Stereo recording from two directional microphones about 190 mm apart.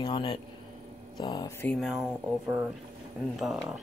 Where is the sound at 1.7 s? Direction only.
Centre (ahead or behind).